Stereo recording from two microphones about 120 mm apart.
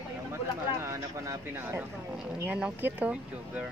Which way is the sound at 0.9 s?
20° right (ahead or behind).